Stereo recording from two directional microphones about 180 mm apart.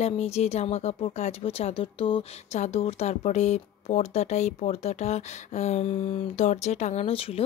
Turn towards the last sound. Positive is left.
turn(degrees=30)  # may be behind; listen again after turning